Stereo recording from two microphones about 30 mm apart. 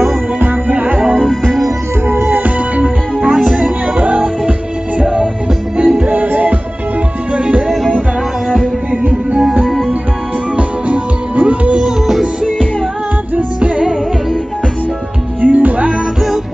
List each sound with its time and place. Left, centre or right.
0.4 s music: right
1.1 s music: centre
2.2 s music: right
3.3 s music: centre
5.8 s music: right
6.0 s music: right
7.3 s music: right
7.6 s music: centre
10.5 s music: right
15.4 s music: right